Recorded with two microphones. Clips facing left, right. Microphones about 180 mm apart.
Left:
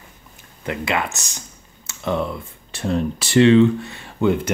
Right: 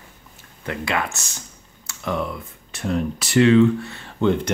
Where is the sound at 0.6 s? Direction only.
20° left (ahead or behind).